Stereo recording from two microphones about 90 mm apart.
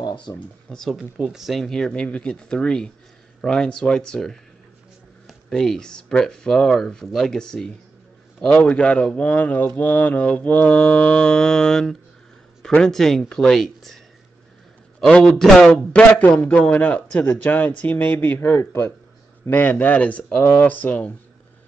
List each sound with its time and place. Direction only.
0.0 s a sound: 60° left (ahead or behind)
0.7 s speech: 5° left (ahead or behind)
15.0 s speech: 5° left (ahead or behind)
15.7 s a man's voice: 15° left (ahead or behind)
19.4 s a man's voice: 20° left (ahead or behind)